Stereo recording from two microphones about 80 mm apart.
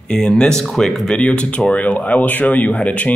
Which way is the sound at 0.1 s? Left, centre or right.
Centre.